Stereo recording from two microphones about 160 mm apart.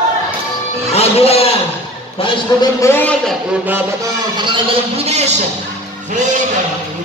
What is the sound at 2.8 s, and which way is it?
Speech, 10° left (ahead or behind).